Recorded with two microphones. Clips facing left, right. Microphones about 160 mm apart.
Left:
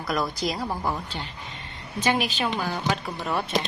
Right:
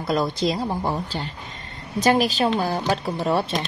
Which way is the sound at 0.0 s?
25° right (ahead or behind).